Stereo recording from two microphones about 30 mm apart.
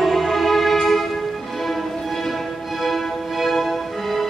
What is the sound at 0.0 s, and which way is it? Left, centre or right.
Music, centre.